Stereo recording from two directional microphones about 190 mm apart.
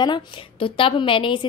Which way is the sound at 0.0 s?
25° left (ahead or behind).